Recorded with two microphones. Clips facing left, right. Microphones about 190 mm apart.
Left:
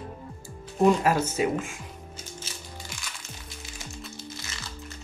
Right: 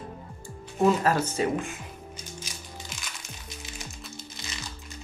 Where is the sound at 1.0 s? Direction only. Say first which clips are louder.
Left 1 dB; 10° left (ahead or behind).